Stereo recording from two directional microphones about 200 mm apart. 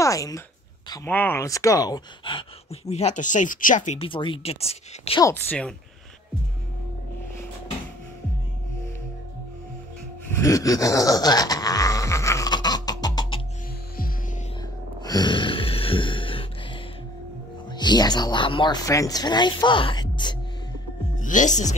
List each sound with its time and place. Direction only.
0.0 s speech: 15° left (ahead or behind)
5.2 s speech: 10° left (ahead or behind)
10.3 s groan: 15° left (ahead or behind)
15.0 s a sound: 20° left (ahead or behind)
17.7 s speech: 20° left (ahead or behind)
21.2 s speech: 40° left (ahead or behind)